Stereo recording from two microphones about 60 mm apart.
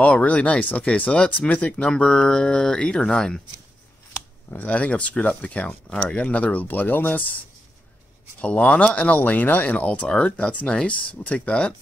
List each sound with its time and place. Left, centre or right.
0.0 s speech: left
1.9 s speech: centre
4.5 s speech: left
8.4 s speech: left